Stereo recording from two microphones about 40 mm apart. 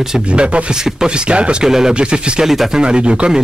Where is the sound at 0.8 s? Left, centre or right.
Centre.